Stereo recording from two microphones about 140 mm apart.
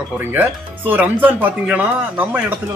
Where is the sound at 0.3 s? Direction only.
15° right (ahead or behind).